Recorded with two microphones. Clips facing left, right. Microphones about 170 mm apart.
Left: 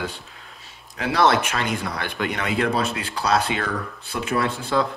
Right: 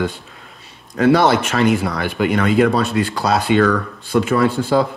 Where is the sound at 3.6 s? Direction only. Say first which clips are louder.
Right 11 dB; 90° right.